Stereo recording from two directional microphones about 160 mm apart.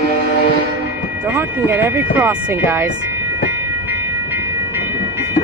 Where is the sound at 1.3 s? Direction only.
15° right (ahead or behind).